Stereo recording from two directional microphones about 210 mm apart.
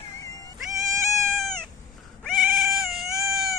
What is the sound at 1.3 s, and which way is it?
Cat, centre (ahead or behind).